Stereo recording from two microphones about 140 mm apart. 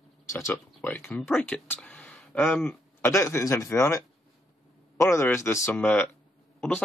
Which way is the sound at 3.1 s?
20° left (ahead or behind).